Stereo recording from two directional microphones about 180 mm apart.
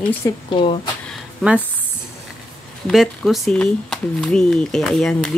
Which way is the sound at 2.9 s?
Centre (ahead or behind).